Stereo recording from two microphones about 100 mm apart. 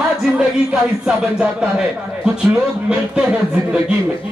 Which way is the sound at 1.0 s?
10° right (ahead or behind).